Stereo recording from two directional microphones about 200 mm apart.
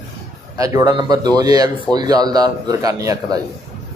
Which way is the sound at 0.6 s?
20° right (ahead or behind).